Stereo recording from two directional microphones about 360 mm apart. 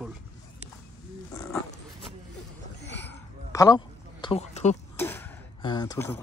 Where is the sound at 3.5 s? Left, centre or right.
Centre.